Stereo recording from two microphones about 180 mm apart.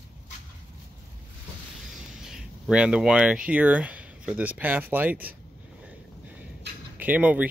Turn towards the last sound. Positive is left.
turn(degrees=-10)  # may be behind; listen again after turning